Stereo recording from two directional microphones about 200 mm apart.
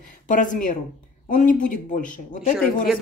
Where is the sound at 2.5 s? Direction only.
Centre (ahead or behind).